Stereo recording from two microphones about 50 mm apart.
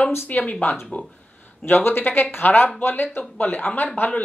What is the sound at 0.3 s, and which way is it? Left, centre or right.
A woman's voice, left.